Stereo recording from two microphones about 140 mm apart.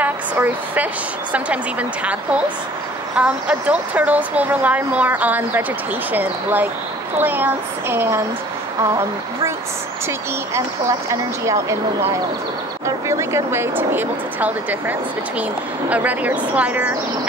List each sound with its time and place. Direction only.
0.0 s a woman's voice: 10° right (ahead or behind)
3.2 s speech: 10° right (ahead or behind)
11.1 s speech: 20° right (ahead or behind)
12.8 s speech: 20° right (ahead or behind)